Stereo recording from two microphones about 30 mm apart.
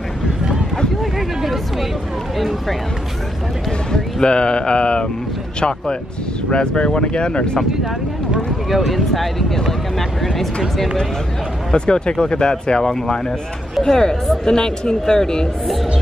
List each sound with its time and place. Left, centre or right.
1.4 s speech: centre
3.9 s speech: left
8.6 s speech: centre
11.7 s speech: left